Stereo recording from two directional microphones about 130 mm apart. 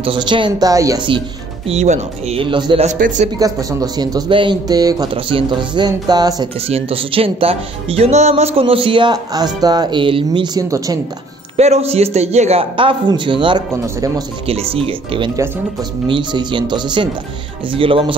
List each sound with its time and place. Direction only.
0.0 s speech: 40° right (ahead or behind)
1.7 s speech: 55° right (ahead or behind); by 2.8 s 40° right (ahead or behind)
2.8 s a man's voice: 65° right (ahead or behind)
3.3 s speech: 30° right (ahead or behind)
6.7 s speech: 45° right (ahead or behind); by 11.0 s 30° right (ahead or behind)
11.5 s speech: 55° right (ahead or behind)